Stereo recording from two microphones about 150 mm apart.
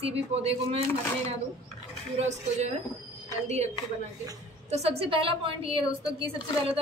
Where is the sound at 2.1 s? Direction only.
50° right (ahead or behind).